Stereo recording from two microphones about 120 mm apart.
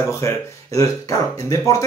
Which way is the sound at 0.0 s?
25° left (ahead or behind).